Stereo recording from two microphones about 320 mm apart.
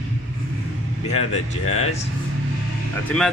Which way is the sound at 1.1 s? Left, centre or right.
Left.